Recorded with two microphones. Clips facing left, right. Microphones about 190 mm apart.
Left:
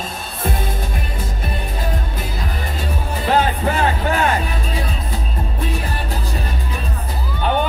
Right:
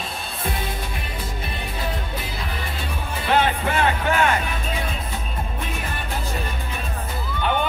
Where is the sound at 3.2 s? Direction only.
40° left (ahead or behind).